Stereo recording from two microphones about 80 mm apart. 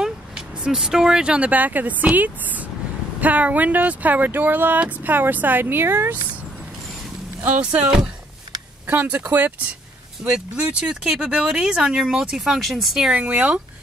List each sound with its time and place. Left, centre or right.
0.7 s speech: centre; by 6.1 s right
7.4 s speech: centre
8.8 s speech: right